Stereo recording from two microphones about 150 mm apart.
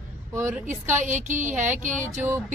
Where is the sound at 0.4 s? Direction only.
15° right (ahead or behind).